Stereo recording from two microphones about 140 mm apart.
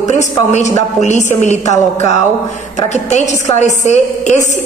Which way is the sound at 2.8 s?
55° left (ahead or behind).